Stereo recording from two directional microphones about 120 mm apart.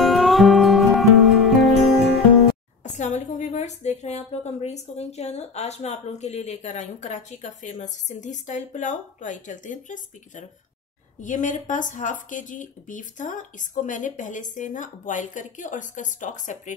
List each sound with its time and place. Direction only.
0.0 s music: centre (ahead or behind)
2.8 s a woman's voice: 80° left